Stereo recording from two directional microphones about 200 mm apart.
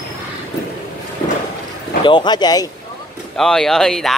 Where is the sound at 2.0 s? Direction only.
20° left (ahead or behind).